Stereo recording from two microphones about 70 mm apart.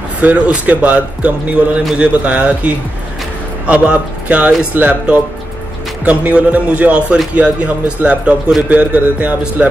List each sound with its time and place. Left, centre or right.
0.2 s speech: right